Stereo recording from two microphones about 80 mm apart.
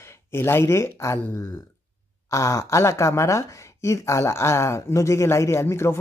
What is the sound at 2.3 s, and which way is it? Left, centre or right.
Speech, left.